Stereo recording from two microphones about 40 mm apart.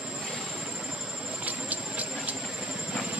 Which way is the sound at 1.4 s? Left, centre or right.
Right.